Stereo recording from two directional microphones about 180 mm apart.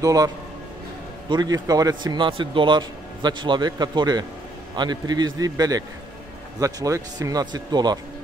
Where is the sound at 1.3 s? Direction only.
20° right (ahead or behind).